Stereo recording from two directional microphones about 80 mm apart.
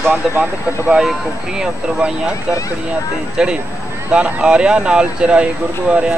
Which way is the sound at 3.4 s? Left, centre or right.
Centre.